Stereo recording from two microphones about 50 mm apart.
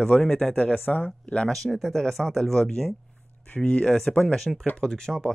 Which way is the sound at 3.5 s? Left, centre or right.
Left.